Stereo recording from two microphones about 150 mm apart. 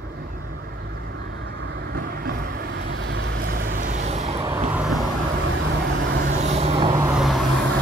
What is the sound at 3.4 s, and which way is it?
Vehicle, 65° right (ahead or behind).